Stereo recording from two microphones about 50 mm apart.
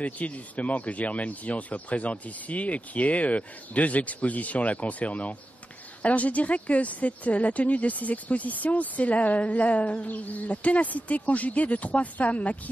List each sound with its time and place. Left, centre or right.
0.0 s speech: left